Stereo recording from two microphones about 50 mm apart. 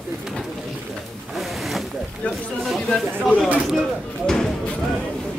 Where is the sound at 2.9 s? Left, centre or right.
Left.